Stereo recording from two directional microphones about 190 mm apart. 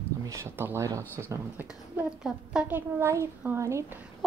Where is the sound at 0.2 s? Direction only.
15° right (ahead or behind).